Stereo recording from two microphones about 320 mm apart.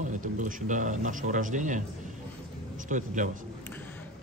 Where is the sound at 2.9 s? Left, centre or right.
Right.